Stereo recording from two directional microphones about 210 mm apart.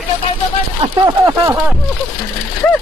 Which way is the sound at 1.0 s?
15° right (ahead or behind).